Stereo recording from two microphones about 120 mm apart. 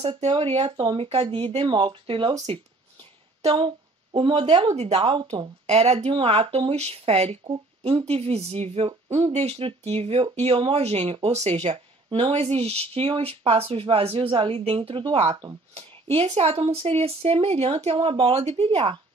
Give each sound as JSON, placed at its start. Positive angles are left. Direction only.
{"t": 0.0, "sound": "speech", "side_deg": -50}
{"t": 2.4, "sound": "speech", "side_deg": -55}
{"t": 5.7, "sound": "speech", "side_deg": -60}